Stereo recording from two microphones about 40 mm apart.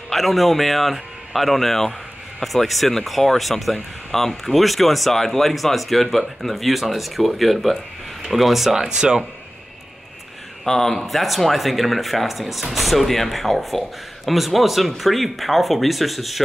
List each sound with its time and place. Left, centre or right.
0.1 s speech: centre
8.8 s speech: centre
10.6 s speech: centre